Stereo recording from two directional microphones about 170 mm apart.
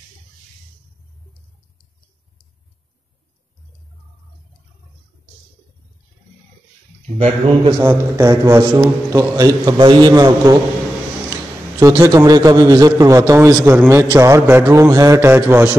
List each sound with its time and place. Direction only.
7.2 s speech: 35° right (ahead or behind)
7.8 s a man's voice: 15° right (ahead or behind)
11.8 s a man's voice: 20° right (ahead or behind)